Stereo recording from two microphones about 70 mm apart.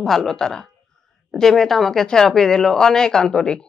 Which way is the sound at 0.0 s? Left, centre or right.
Centre.